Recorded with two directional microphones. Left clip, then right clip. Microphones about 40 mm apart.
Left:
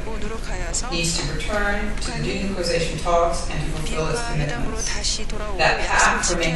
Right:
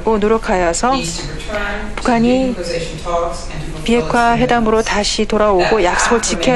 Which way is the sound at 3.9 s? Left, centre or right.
Right.